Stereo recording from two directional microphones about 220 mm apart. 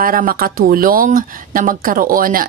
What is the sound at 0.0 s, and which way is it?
A woman's voice, 40° right (ahead or behind).